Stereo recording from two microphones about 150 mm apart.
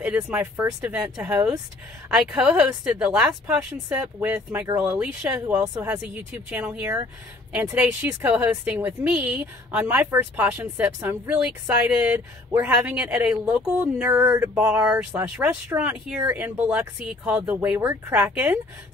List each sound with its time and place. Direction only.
0.0 s a woman's voice: 10° right (ahead or behind)
4.6 s speech: 25° right (ahead or behind)
4.9 s speech: 5° right (ahead or behind)
14.2 s speech: 20° right (ahead or behind)